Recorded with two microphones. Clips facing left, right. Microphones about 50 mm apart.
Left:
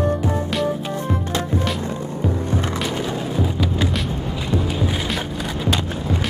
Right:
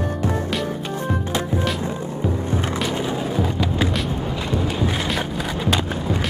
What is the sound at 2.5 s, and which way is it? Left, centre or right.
Skateboard, right.